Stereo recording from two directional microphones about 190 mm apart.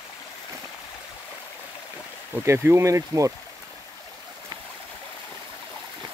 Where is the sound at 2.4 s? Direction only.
15° right (ahead or behind).